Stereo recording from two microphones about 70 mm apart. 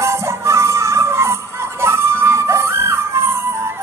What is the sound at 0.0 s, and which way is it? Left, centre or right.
Music, right.